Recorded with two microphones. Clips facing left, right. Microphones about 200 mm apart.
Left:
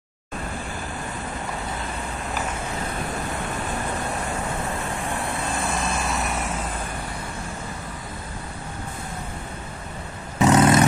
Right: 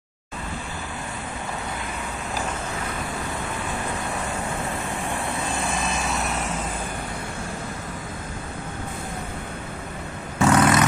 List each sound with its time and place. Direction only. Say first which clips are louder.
10.4 s vehicle: left 2 dB; 25° left (ahead or behind)